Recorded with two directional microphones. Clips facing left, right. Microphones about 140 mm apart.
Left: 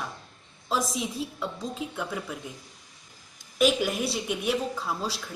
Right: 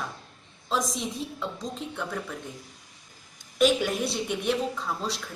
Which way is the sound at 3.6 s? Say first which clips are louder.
Right 1 dB; 5° left (ahead or behind).